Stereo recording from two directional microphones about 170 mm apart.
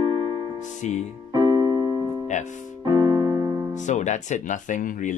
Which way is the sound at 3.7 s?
45° left (ahead or behind).